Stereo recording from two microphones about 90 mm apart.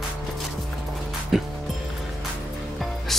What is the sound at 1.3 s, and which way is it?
Music, 5° right (ahead or behind).